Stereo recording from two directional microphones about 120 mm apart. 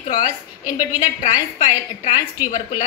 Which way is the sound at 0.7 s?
90° left.